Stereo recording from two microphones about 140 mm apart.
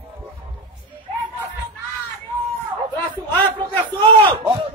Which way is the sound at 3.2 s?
10° left (ahead or behind).